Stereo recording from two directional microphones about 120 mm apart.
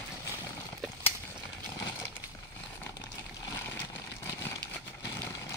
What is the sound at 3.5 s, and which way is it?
Vehicle, 20° left (ahead or behind).